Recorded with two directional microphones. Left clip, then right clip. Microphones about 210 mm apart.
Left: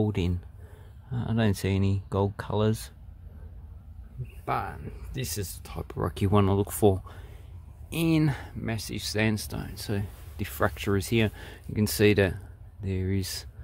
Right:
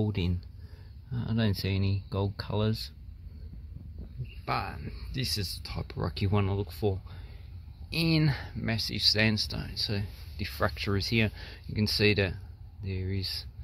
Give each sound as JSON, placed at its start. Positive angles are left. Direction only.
{"t": 0.0, "sound": "speech", "side_deg": 15}
{"t": 4.5, "sound": "speech", "side_deg": 10}
{"t": 7.9, "sound": "speech", "side_deg": 10}